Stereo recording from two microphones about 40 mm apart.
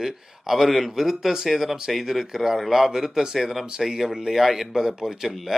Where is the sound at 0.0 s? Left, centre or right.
Centre.